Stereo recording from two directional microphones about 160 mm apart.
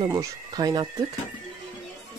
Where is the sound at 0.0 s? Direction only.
25° right (ahead or behind).